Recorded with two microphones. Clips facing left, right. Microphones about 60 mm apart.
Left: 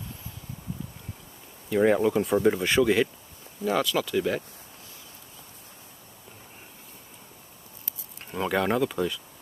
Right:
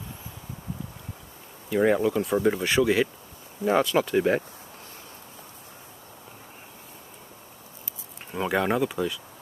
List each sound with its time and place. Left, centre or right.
1.7 s speech: centre
3.6 s speech: right
8.3 s speech: centre